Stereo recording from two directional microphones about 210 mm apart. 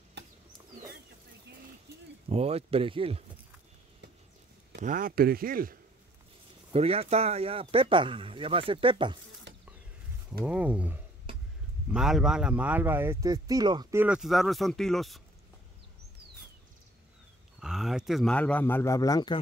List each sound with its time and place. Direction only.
0.2 s a sound: 55° right (ahead or behind)
2.2 s speech: 30° right (ahead or behind)
4.7 s speech: 40° right (ahead or behind)
6.7 s speech: 30° right (ahead or behind)
9.5 s snake: 55° right (ahead or behind)
10.4 s speech: 5° right (ahead or behind)
17.6 s speech: centre (ahead or behind); by 19.3 s 15° left (ahead or behind)